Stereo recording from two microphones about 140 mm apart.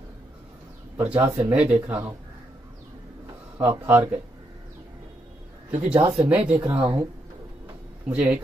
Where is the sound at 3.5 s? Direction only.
15° right (ahead or behind).